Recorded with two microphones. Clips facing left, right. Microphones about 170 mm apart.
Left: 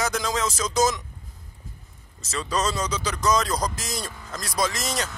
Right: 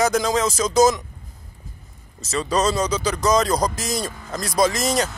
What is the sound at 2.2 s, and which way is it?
Speech, 40° right (ahead or behind).